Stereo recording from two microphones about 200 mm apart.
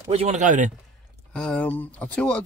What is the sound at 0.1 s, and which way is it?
Speech, 35° right (ahead or behind).